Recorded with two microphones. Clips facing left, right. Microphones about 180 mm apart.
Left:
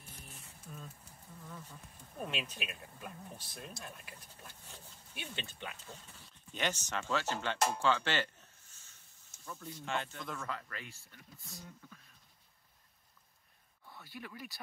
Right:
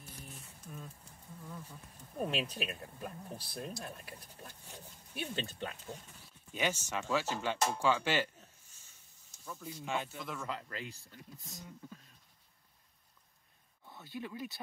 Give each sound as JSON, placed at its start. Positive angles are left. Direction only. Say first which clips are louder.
{"t": 0.7, "sound": "a sound", "louder": "right 1 dB", "side_deg": -10}
{"t": 1.4, "sound": "bee", "louder": "right 2 dB", "side_deg": -10}
{"t": 2.1, "sound": "speech", "louder": "right 5 dB", "side_deg": -35}
{"t": 4.6, "sound": "pig", "louder": "right 3 dB", "side_deg": -15}
{"t": 5.1, "sound": "speech", "louder": "right 7 dB", "side_deg": -40}
{"t": 5.9, "sound": "speech", "louder": "right 5 dB", "side_deg": -10}
{"t": 9.4, "sound": "speech", "louder": "right 1 dB", "side_deg": -5}
{"t": 10.4, "sound": "speech", "louder": "right 2 dB", "side_deg": -20}
{"t": 13.8, "sound": "speech", "louder": "right 5 dB", "side_deg": -20}